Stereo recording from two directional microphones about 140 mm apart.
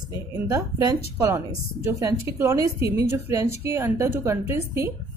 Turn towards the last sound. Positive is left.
turn(degrees=-20)  # may be behind; listen again after turning